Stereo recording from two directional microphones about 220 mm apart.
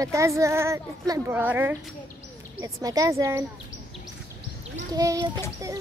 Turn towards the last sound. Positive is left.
turn(degrees=-15)  # may be behind; listen again after turning